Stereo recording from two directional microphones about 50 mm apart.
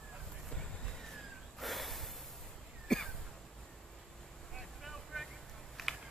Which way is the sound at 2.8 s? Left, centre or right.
Centre.